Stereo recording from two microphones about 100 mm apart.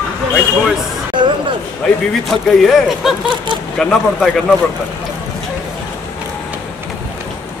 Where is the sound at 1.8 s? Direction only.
10° left (ahead or behind).